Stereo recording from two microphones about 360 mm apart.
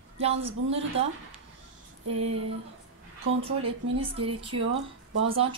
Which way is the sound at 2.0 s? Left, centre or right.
Right.